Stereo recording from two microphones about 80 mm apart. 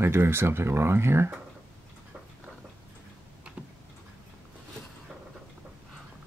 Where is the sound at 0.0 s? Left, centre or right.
Right.